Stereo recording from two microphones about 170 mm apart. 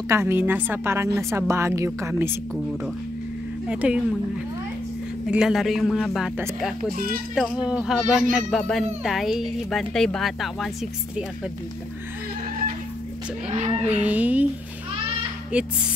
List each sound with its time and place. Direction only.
0.1 s a woman's voice: 15° right (ahead or behind)
3.6 s a woman's voice: 5° right (ahead or behind)
5.2 s a woman's voice: 5° right (ahead or behind)
6.9 s a child's voice: 60° right (ahead or behind)
7.3 s a woman's voice: 5° right (ahead or behind)
13.5 s speech: 35° right (ahead or behind)
13.8 s a woman's voice: 10° right (ahead or behind)
15.5 s a woman's voice: 5° right (ahead or behind)